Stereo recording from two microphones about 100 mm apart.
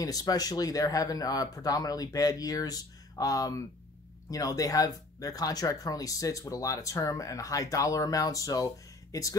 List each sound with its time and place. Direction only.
0.0 s speech: 40° left (ahead or behind)